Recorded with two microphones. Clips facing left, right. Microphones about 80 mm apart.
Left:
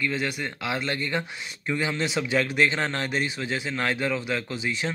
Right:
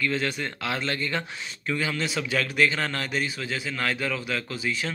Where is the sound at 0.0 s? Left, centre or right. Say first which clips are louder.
Right 1 dB; centre.